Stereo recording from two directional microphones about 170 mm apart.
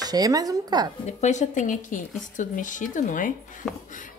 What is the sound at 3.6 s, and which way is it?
Speech, centre (ahead or behind).